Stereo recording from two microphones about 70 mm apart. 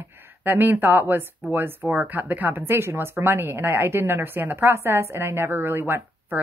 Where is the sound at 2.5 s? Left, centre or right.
Right.